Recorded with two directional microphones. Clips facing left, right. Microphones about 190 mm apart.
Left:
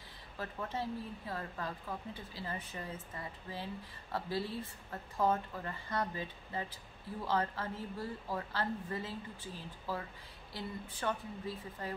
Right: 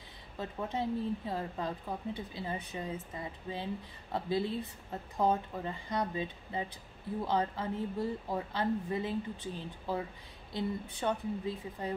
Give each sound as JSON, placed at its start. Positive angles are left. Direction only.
{"t": 0.4, "sound": "speech", "side_deg": -20}